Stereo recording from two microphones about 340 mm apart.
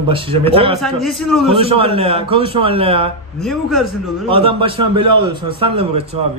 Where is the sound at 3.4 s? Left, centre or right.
Centre.